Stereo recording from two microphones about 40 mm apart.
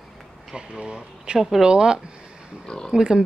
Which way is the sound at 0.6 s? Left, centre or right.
Right.